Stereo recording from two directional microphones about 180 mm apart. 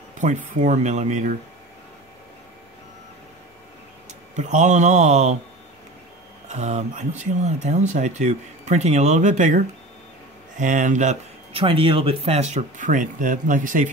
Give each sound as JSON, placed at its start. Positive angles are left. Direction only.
{"t": 0.2, "sound": "speech", "side_deg": -45}
{"t": 4.1, "sound": "speech", "side_deg": -40}
{"t": 6.5, "sound": "speech", "side_deg": -40}
{"t": 10.6, "sound": "speech", "side_deg": -45}
{"t": 11.6, "sound": "speech", "side_deg": -30}